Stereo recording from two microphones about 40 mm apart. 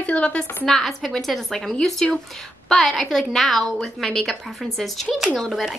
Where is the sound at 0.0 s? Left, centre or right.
Left.